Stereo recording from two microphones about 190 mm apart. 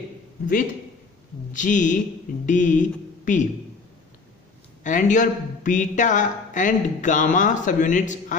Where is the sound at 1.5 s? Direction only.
40° left (ahead or behind).